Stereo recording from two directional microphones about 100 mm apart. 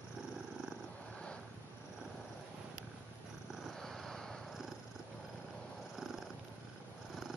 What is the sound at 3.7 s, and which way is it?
Purr, 5° left (ahead or behind).